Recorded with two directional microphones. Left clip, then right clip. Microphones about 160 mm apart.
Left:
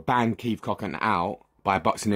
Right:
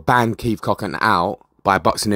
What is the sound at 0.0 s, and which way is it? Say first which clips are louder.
Speech: right 8 dB; 25° right (ahead or behind).